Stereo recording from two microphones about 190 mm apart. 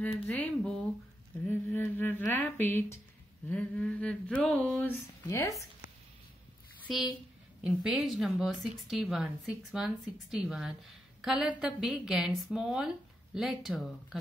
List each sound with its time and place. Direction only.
0.0 s a woman's voice: 10° left (ahead or behind)
5.3 s speech: 15° left (ahead or behind)
7.6 s a woman's voice: 5° right (ahead or behind)